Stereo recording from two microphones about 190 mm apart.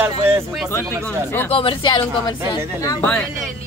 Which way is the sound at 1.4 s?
30° left (ahead or behind).